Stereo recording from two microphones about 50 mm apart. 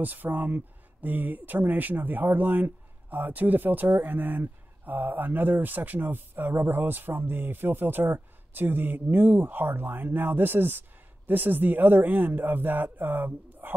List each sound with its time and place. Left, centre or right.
0.0 s speech: right